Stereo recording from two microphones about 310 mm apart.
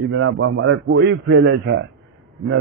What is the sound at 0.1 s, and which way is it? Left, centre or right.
Speech, right.